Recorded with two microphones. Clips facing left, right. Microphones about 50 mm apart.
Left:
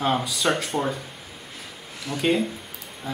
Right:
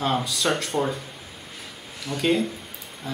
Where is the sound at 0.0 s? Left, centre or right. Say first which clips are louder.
Left 1 dB; centre.